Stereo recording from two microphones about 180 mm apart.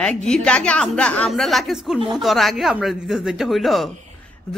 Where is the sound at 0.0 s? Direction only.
5° left (ahead or behind).